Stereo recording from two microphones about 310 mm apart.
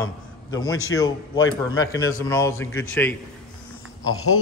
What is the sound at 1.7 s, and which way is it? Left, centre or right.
A man's voice, centre.